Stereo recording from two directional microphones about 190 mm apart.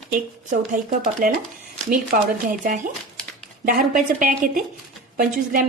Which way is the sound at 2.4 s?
45° right (ahead or behind).